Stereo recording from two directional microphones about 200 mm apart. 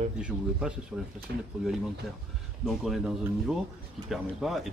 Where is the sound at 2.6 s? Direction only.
Centre (ahead or behind).